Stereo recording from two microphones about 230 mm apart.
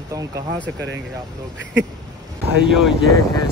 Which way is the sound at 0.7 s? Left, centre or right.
Right.